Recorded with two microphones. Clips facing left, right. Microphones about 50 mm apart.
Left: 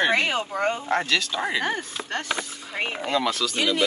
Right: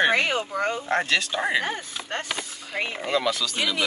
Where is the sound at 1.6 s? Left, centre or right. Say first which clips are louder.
Left 3 dB; left.